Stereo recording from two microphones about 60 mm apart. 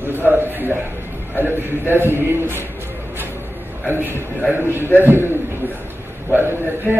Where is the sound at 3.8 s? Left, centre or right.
Right.